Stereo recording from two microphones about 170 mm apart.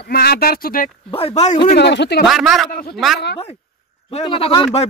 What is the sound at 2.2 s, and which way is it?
Speech, centre (ahead or behind).